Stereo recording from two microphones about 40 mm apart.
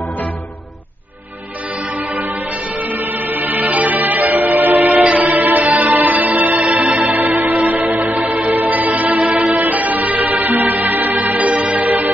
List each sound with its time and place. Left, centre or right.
2.8 s music: right